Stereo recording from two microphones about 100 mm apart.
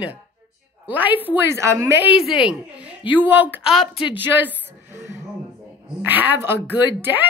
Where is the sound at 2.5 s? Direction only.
10° right (ahead or behind).